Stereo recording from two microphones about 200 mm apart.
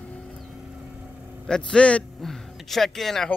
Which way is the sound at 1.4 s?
5° left (ahead or behind).